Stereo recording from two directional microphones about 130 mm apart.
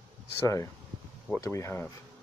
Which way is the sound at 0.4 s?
25° left (ahead or behind).